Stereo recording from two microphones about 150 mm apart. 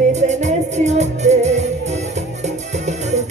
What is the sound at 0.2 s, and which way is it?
Music, 50° right (ahead or behind).